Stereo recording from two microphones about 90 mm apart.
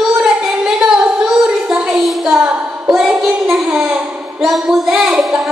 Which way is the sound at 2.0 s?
Centre (ahead or behind).